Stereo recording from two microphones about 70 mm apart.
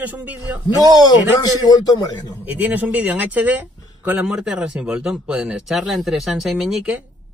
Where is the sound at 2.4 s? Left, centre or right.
Right.